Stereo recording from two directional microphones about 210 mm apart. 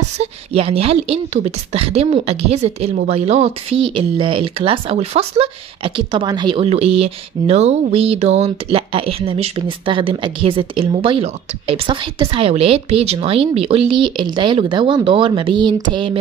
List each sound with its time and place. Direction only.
0.2 s a woman's voice: 30° right (ahead or behind)